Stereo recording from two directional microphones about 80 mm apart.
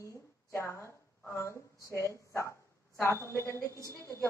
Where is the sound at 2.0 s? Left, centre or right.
Left.